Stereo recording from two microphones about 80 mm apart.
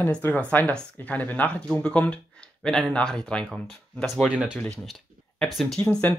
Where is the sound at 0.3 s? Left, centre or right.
Centre.